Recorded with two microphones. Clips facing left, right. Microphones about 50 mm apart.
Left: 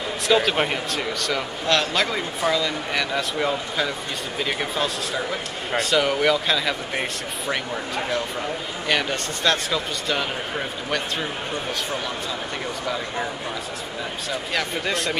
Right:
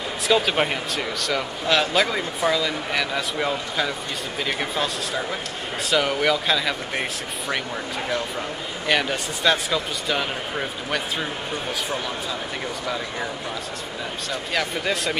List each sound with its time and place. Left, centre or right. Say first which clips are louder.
0.3 s a man's voice: even; centre
8.8 s a man's voice: right 1 dB; centre
12.8 s a man's voice: left 2 dB; centre
14.3 s a man's voice: even; centre